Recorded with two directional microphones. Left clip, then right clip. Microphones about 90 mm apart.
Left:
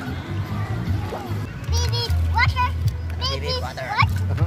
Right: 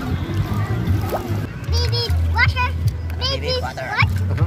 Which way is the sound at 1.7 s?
35° left (ahead or behind).